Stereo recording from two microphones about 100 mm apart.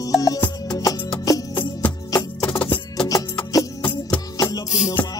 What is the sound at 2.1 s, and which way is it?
Music, 45° left (ahead or behind).